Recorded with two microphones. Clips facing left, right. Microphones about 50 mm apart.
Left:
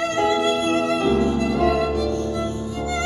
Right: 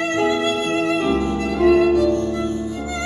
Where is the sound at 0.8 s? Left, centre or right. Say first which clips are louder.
Even; right.